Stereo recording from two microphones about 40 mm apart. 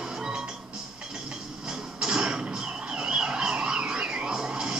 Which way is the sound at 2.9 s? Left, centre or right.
Right.